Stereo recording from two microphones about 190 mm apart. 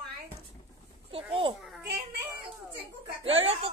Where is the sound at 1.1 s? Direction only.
30° right (ahead or behind).